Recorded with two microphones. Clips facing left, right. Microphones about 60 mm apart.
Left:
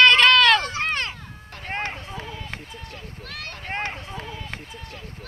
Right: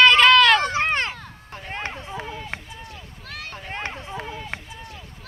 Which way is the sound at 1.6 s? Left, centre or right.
Left.